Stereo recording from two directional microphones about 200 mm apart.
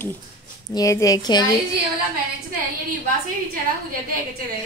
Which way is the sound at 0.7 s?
15° left (ahead or behind).